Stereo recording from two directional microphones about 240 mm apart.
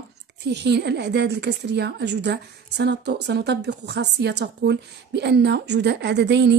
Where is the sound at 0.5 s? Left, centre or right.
Right.